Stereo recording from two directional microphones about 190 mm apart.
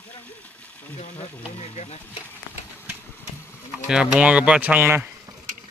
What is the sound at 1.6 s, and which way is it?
Speech, 35° left (ahead or behind).